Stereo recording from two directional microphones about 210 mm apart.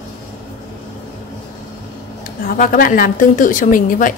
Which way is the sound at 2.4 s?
40° left (ahead or behind).